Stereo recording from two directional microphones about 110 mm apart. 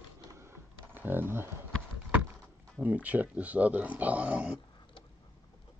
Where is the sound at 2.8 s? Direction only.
15° right (ahead or behind).